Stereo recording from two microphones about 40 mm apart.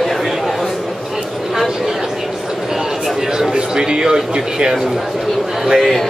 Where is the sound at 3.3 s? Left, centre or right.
Centre.